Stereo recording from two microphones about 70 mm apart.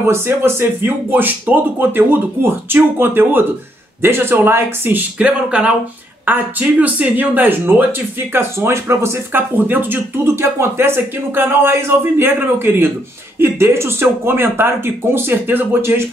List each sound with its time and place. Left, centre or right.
0.0 s speech: right
5.2 s speech: centre; by 16.1 s right